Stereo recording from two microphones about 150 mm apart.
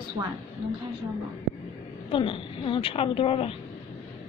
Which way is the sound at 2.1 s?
35° left (ahead or behind).